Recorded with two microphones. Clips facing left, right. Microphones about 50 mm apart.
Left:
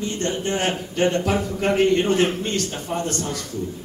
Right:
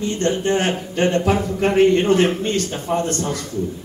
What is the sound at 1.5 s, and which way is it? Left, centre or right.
A man's voice, centre.